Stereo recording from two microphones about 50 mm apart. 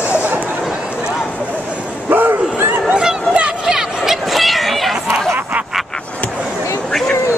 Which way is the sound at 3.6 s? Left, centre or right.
Centre.